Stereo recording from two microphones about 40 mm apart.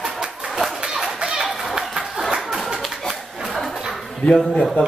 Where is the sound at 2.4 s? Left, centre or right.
Centre.